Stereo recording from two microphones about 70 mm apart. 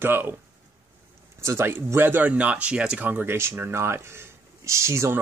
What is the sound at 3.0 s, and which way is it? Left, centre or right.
Speech, right.